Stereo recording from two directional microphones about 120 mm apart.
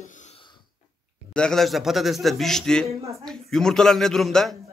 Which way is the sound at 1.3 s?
5° left (ahead or behind).